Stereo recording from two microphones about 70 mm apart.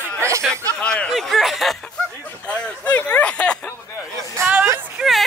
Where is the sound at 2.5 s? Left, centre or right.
Centre.